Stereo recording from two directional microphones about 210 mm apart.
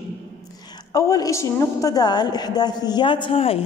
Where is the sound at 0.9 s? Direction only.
15° left (ahead or behind).